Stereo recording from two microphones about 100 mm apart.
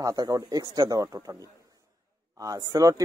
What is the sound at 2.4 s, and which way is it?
Speech, 35° right (ahead or behind).